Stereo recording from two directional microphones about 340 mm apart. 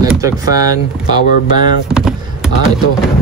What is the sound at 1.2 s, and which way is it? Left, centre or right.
Speech, left.